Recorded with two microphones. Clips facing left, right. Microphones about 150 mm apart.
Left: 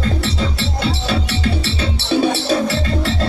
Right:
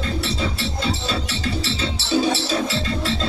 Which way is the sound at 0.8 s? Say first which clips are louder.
Left 5 dB; 65° left (ahead or behind).